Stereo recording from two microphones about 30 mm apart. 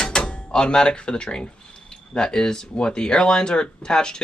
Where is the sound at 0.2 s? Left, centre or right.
Left.